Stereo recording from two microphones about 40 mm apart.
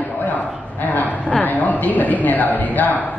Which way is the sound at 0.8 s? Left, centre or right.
Left.